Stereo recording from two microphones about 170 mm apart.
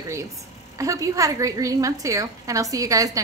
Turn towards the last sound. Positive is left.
turn(degrees=-20)  # may be behind; listen again after turning